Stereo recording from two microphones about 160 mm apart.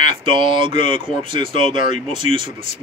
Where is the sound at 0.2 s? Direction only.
30° right (ahead or behind).